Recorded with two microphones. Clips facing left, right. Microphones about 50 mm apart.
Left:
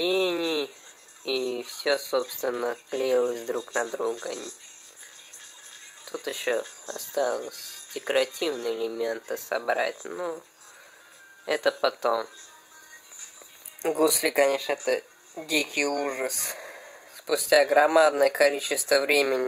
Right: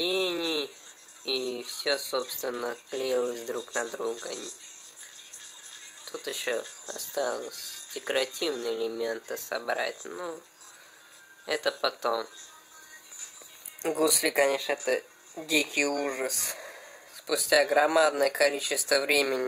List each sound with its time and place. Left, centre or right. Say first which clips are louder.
0.0 s a sound: left 4 dB; left
1.2 s speech: left 4 dB; left
6.2 s speech: left 4 dB; left
9.9 s speech: left 4 dB; centre
11.4 s speech: left 4 dB; left
13.9 s speech: left 3 dB; centre
14.3 s speech: left 2 dB; centre
16.0 s speech: left 2 dB; centre